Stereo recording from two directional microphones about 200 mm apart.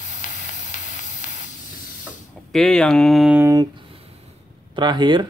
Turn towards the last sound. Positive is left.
turn(degrees=-20)  # may be behind; listen again after turning